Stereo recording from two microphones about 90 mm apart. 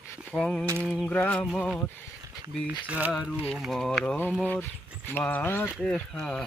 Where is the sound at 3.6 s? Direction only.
5° left (ahead or behind).